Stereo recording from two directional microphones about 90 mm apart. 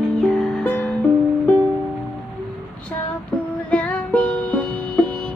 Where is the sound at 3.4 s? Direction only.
15° left (ahead or behind).